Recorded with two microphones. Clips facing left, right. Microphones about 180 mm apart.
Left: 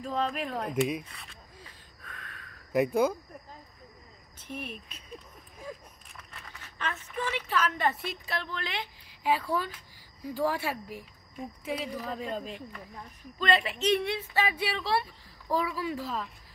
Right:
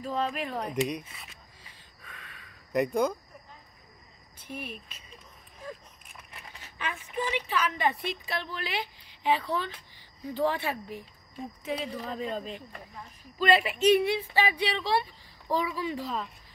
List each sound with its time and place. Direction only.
0.0 s a woman's voice: 5° right (ahead or behind)
2.0 s a sound: 5° right (ahead or behind)
4.4 s speech: 5° right (ahead or behind)
6.1 s a sound: 15° right (ahead or behind)
7.5 s a woman's voice: 5° right (ahead or behind)
13.4 s a woman's voice: 10° right (ahead or behind)